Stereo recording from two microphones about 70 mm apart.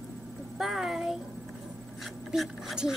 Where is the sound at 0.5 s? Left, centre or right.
Centre.